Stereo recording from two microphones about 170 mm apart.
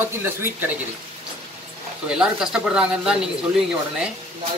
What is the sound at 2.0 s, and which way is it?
Speech, 5° right (ahead or behind).